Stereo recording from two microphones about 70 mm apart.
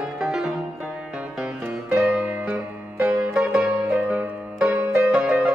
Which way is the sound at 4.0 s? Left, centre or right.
Right.